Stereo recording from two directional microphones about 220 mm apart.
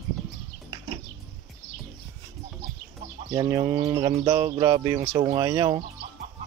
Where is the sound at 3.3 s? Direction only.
15° right (ahead or behind).